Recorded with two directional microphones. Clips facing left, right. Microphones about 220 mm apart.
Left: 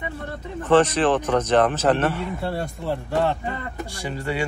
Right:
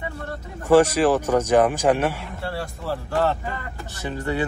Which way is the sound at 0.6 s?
10° right (ahead or behind).